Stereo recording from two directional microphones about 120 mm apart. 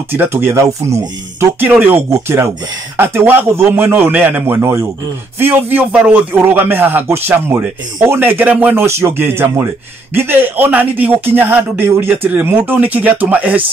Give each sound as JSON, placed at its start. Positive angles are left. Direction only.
{"t": 0.1, "sound": "a man's voice", "side_deg": -15}